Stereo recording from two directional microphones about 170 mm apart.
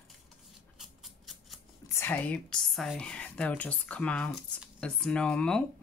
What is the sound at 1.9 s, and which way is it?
Speech, 15° left (ahead or behind).